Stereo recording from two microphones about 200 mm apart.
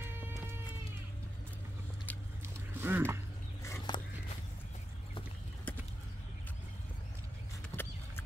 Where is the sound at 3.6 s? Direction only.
20° left (ahead or behind).